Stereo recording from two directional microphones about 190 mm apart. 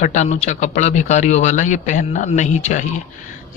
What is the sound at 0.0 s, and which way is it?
Speech, 40° left (ahead or behind).